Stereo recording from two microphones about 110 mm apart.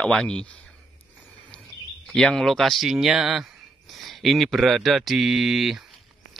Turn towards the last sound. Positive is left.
turn(degrees=0)  # may be behind; listen again after turning